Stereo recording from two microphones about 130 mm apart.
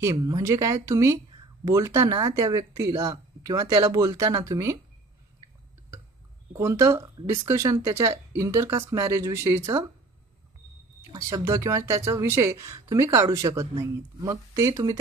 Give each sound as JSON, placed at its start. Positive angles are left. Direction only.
{"t": 0.2, "sound": "speech", "side_deg": -25}
{"t": 6.5, "sound": "speech", "side_deg": -25}
{"t": 11.0, "sound": "speech", "side_deg": -25}